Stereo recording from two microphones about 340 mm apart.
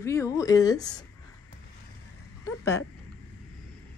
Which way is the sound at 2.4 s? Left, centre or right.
Centre.